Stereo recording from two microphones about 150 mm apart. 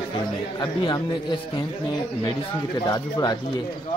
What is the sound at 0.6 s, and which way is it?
Speech, 30° left (ahead or behind).